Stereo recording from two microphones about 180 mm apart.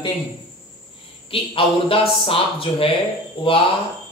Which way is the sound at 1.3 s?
30° left (ahead or behind).